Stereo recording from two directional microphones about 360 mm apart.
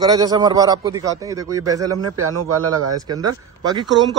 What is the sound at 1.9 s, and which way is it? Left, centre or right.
Speech, right.